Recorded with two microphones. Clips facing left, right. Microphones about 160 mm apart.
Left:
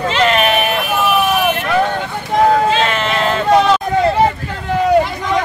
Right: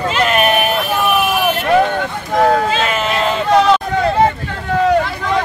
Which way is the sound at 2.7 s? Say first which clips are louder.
Left 1 dB; 5° right (ahead or behind).